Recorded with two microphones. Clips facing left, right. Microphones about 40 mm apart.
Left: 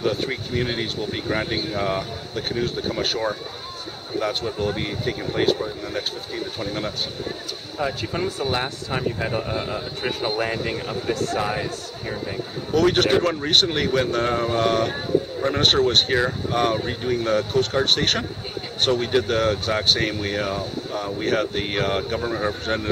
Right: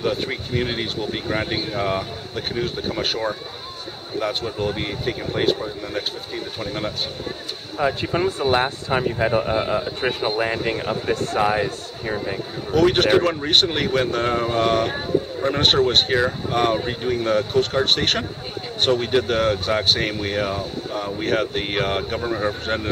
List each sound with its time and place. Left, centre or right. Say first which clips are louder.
0.0 s speech: even; centre